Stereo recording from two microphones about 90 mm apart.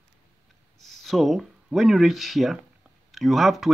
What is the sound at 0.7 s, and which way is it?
Speech, centre (ahead or behind).